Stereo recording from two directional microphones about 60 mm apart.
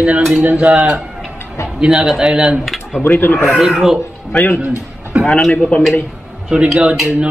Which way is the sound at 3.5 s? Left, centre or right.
Centre.